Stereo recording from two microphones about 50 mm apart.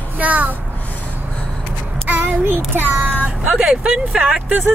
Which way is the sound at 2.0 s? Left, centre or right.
Right.